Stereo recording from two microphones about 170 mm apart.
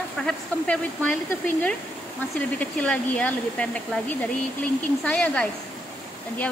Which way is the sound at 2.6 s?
10° left (ahead or behind).